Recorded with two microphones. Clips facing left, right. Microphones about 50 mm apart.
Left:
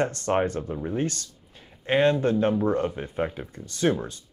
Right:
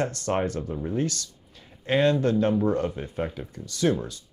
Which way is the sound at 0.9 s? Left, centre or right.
Left.